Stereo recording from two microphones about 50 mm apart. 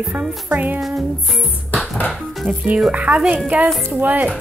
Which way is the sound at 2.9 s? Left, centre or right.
Right.